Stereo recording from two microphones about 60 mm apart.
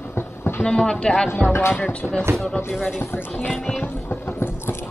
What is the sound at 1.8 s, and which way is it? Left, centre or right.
Speech, left.